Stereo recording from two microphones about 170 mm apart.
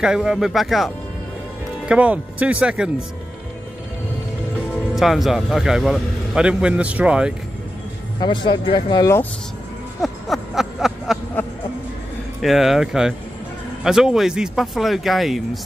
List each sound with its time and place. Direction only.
0.0 s a man's voice: 5° right (ahead or behind)
4.9 s a man's voice: centre (ahead or behind)
8.2 s speech: 25° left (ahead or behind)
10.0 s a sound: centre (ahead or behind)
12.4 s a man's voice: centre (ahead or behind)